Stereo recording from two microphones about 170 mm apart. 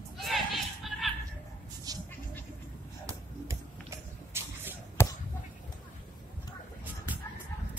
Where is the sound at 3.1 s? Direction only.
15° right (ahead or behind).